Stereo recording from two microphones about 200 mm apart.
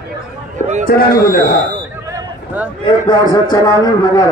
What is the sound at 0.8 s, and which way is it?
Speech, 45° left (ahead or behind).